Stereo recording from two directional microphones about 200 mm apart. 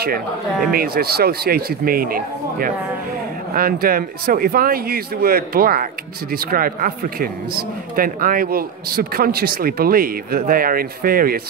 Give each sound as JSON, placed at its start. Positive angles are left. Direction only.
{"t": 0.7, "sound": "speech", "side_deg": -50}